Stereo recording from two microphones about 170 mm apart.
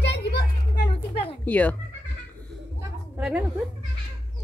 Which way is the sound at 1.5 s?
10° left (ahead or behind).